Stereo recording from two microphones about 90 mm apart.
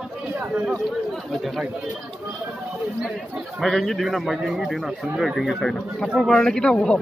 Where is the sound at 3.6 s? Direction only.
Centre (ahead or behind).